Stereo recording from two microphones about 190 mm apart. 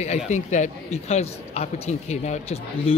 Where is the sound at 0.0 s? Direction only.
35° left (ahead or behind).